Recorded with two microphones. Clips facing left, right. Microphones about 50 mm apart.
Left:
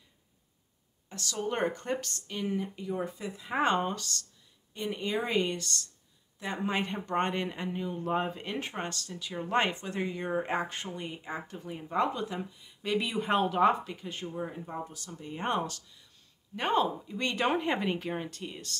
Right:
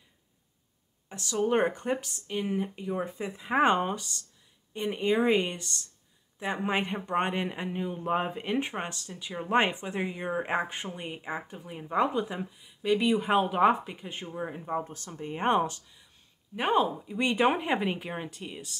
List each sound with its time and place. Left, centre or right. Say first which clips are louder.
1.0 s speech: right 6 dB; centre
4.7 s speech: right 5 dB; right; by 13.5 s centre
13.5 s speech: right 2 dB; centre
16.5 s speech: right 2 dB; centre